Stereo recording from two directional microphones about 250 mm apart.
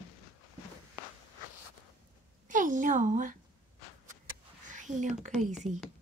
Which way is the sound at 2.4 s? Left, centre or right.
Right.